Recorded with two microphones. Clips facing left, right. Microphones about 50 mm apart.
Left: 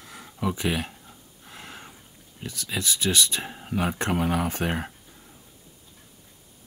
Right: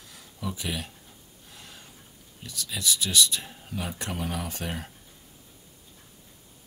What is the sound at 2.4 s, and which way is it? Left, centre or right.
Speech, left.